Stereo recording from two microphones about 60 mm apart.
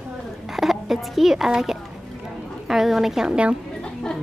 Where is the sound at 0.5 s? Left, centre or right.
Centre.